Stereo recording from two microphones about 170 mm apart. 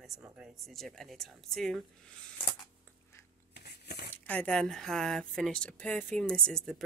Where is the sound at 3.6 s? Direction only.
75° left (ahead or behind).